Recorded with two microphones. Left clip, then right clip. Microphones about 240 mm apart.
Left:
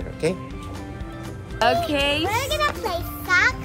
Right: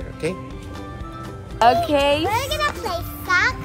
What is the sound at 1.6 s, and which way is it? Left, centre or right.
Speech, centre.